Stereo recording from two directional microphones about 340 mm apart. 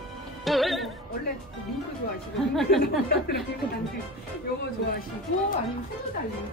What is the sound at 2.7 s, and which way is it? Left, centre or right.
Speech, left.